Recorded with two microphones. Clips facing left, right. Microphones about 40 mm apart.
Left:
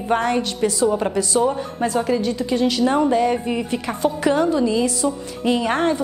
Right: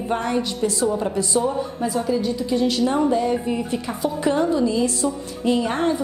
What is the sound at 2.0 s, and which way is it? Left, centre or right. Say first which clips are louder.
Speech: left 1 dB; left.